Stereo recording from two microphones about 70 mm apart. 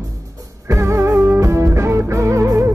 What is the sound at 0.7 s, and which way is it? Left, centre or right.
Music, right.